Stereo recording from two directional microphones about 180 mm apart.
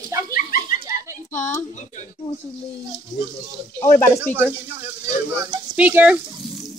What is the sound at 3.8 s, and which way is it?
Speech, 10° left (ahead or behind).